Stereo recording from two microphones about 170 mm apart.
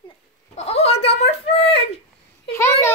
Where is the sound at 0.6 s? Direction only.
40° left (ahead or behind).